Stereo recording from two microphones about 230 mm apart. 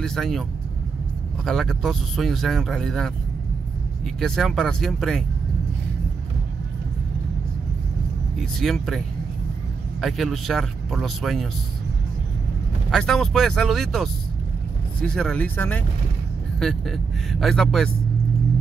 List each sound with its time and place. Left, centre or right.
0.0 s speech: centre
4.2 s speech: centre
8.4 s speech: centre
12.9 s speech: centre